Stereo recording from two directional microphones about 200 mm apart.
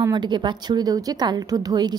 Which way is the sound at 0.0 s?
20° right (ahead or behind).